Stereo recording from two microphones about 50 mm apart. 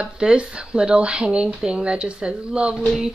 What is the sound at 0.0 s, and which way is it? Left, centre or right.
Speech, centre.